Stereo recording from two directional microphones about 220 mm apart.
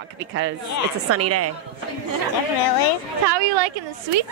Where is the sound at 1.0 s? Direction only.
90° right.